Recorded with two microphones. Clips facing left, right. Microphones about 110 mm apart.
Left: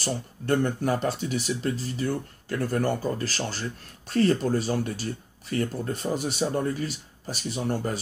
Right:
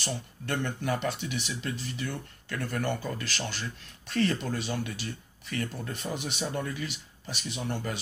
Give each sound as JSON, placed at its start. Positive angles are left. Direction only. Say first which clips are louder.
{"t": 0.0, "sound": "speech", "louder": "left 5 dB", "side_deg": 40}